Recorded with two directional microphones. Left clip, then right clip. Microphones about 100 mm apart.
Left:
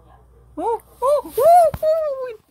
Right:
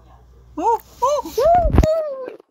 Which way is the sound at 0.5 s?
10° left (ahead or behind).